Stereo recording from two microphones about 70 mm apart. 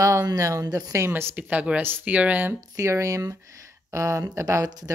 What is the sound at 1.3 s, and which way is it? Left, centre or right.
Speech, right.